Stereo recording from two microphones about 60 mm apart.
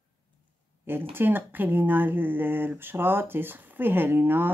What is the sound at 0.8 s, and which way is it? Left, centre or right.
Speech, right.